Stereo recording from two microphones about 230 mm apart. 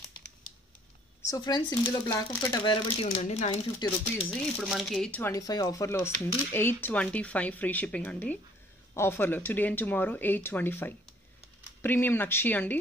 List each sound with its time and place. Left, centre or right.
1.3 s speech: centre
3.8 s speech: centre
4.6 s speech: centre